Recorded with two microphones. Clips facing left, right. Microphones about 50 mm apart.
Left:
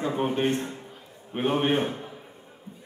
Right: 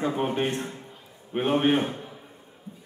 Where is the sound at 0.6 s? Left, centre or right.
Centre.